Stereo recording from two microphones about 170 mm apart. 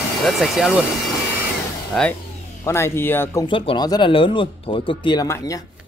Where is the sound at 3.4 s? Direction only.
30° left (ahead or behind).